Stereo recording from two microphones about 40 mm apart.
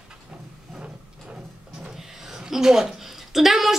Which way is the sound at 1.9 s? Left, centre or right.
Centre.